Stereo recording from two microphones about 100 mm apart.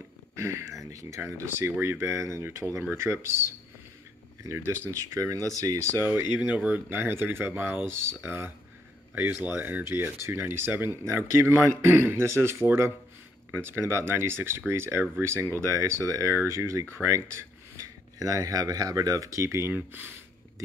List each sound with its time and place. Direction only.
0.4 s speech: 25° right (ahead or behind)
6.0 s speech: 15° right (ahead or behind)
18.2 s speech: 35° right (ahead or behind); by 20.1 s 20° right (ahead or behind)